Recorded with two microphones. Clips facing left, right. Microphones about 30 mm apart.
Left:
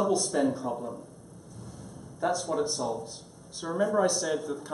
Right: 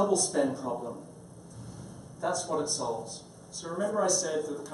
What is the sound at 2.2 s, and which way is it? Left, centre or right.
A man's voice, centre.